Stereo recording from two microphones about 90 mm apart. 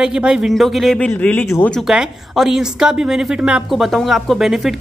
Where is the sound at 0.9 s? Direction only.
15° left (ahead or behind).